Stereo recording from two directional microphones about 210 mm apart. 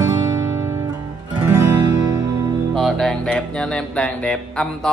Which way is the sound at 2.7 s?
Centre (ahead or behind).